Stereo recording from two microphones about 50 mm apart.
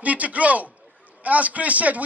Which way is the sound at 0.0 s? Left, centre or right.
Right.